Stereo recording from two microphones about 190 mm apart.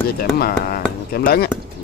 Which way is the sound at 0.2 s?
50° left (ahead or behind).